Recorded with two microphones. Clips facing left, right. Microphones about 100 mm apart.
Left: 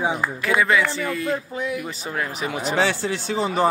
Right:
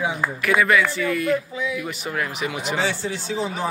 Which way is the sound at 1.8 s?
30° left (ahead or behind).